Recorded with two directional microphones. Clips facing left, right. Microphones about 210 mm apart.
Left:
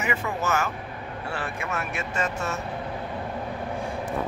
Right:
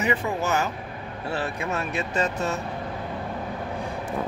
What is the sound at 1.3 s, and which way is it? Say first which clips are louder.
Speech: right 4 dB; 35° right (ahead or behind).